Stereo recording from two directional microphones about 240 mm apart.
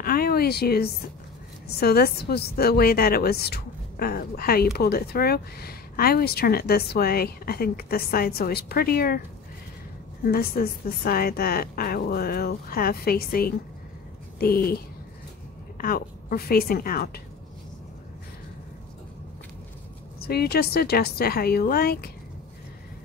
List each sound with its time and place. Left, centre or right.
0.0 s a woman's voice: left
10.2 s speech: left
15.8 s speech: left
20.2 s speech: left